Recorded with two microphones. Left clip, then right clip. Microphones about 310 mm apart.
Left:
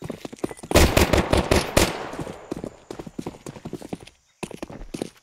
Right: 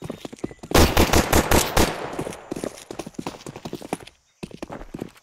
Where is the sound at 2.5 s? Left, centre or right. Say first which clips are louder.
Right 3 dB; centre.